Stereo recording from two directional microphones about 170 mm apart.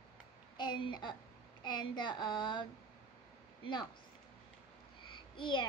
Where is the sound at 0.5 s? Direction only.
25° left (ahead or behind).